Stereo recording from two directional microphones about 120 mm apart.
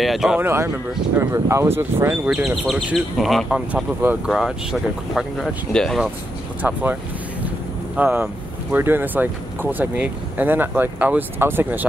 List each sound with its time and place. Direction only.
0.0 s speech: centre (ahead or behind)
0.4 s speech: 20° right (ahead or behind)
2.3 s speech: 5° right (ahead or behind)
6.6 s speech: 15° right (ahead or behind)